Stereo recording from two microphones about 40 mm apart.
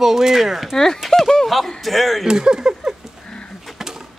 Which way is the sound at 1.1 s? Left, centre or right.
Centre.